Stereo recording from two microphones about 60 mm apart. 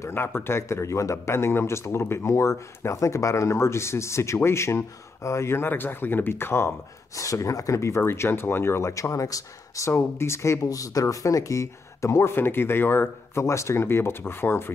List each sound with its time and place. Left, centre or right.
0.1 s speech: left
7.2 s speech: left
9.8 s speech: left
10.6 s speech: left